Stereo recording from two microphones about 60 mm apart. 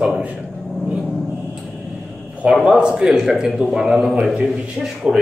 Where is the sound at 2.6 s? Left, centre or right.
Centre.